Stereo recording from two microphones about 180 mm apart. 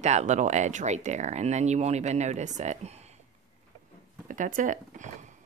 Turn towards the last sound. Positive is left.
turn(degrees=-45)  # may be behind; listen again after turning